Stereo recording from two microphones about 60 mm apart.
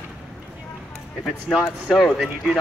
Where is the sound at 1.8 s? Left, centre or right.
Centre.